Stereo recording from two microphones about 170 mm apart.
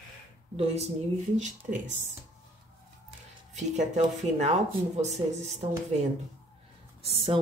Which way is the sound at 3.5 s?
45° right (ahead or behind).